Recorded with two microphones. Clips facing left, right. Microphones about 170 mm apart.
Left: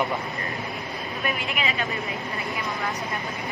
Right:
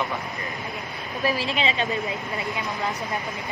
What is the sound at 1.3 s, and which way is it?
Speech, 30° right (ahead or behind).